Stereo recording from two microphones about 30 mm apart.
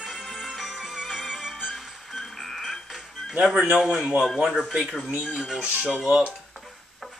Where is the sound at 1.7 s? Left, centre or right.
Centre.